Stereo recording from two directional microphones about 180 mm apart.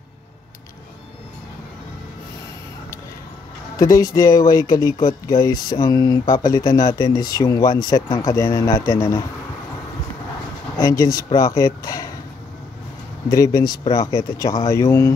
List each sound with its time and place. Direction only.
3.7 s speech: 20° left (ahead or behind)
10.8 s speech: 20° left (ahead or behind)
13.3 s speech: 20° left (ahead or behind)